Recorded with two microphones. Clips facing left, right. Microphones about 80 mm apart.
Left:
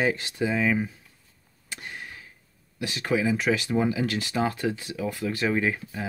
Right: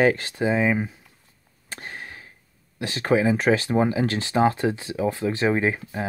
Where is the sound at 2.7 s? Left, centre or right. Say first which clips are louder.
Right 5 dB; right.